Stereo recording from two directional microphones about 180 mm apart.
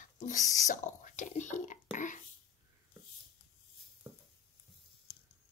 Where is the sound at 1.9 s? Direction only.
45° left (ahead or behind).